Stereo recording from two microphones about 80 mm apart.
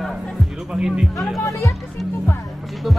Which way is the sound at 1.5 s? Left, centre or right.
Left.